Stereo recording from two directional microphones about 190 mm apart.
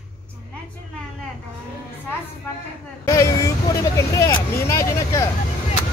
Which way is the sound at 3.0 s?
15° left (ahead or behind).